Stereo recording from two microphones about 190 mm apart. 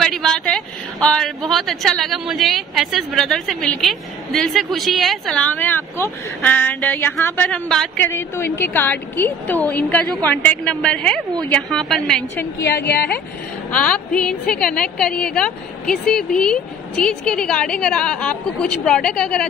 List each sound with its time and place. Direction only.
0.0 s a sound: 5° left (ahead or behind)
1.0 s speech: 5° left (ahead or behind)
12.6 s speech: 55° left (ahead or behind)
13.7 s speech: 5° left (ahead or behind)